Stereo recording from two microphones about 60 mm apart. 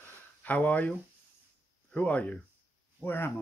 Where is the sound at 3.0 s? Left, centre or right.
Left.